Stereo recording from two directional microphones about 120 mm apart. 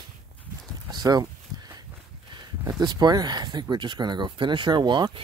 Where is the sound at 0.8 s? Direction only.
35° right (ahead or behind).